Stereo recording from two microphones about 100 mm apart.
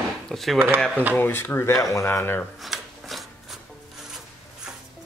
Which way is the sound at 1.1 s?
20° left (ahead or behind).